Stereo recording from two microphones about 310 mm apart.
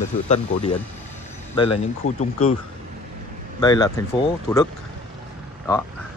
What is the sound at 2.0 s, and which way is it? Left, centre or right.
Speech, left.